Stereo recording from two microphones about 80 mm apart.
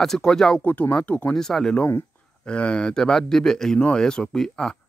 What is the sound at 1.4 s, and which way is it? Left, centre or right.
Speech, centre.